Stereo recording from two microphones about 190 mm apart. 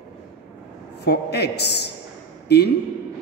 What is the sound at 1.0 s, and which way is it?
A man's voice, 60° left (ahead or behind).